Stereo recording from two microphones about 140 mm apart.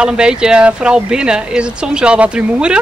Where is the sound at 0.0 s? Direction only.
5° right (ahead or behind).